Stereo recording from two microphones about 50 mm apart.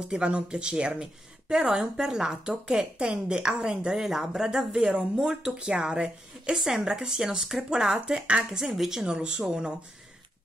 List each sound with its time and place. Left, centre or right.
0.1 s a woman's voice: right
6.6 s a woman's voice: centre
9.0 s a woman's voice: centre